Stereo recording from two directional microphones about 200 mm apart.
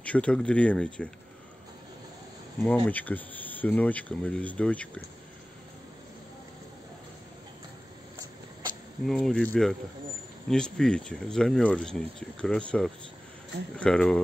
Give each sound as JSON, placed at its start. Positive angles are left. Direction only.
{"t": 0.0, "sound": "speech", "side_deg": 5}
{"t": 2.6, "sound": "speech", "side_deg": 10}
{"t": 9.0, "sound": "speech", "side_deg": 5}